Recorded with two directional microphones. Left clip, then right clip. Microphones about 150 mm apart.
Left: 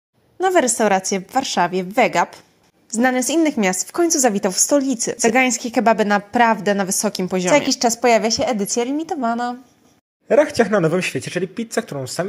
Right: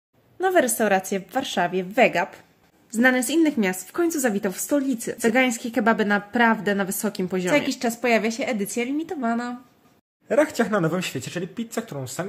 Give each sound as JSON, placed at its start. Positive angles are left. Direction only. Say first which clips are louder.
{"t": 0.4, "sound": "a woman's voice", "louder": "left 4 dB", "side_deg": 25}
{"t": 5.2, "sound": "a woman's voice", "louder": "left 4 dB", "side_deg": 20}